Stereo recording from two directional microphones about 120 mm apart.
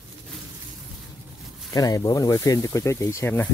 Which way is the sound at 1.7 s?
30° left (ahead or behind).